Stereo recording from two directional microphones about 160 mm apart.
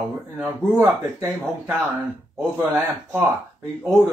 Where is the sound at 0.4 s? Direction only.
15° right (ahead or behind).